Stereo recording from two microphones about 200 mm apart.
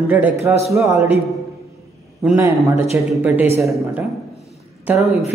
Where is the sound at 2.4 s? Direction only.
15° right (ahead or behind).